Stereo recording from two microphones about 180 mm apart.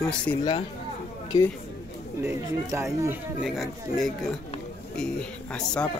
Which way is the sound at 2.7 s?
15° right (ahead or behind).